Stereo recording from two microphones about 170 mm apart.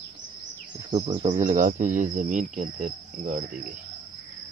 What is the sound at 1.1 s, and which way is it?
Cricket, 45° right (ahead or behind).